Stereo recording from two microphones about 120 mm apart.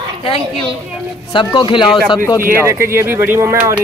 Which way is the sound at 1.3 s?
40° left (ahead or behind).